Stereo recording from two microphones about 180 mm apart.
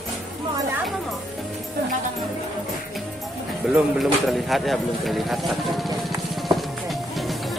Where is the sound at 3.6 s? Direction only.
5° right (ahead or behind).